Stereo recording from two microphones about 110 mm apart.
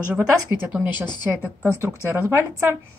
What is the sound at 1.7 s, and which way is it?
Speech, 25° right (ahead or behind).